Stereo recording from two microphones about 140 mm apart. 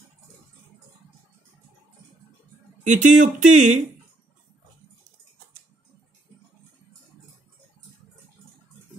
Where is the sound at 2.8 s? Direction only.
65° right (ahead or behind).